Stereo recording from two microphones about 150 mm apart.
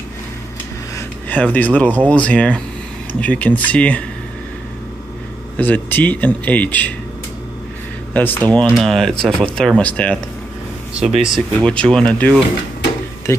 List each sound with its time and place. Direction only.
0.9 s a sound: 10° left (ahead or behind)
2.0 s speech: 10° left (ahead or behind)
5.6 s speech: 10° left (ahead or behind)
8.1 s speech: 10° left (ahead or behind)
8.6 s speech: centre (ahead or behind)
11.1 s speech: 5° right (ahead or behind)
11.6 s speech: 5° left (ahead or behind)
13.3 s speech: 20° left (ahead or behind)